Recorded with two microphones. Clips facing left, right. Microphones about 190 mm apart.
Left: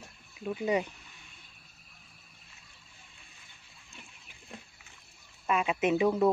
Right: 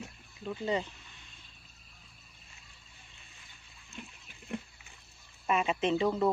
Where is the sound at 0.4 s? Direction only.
10° left (ahead or behind).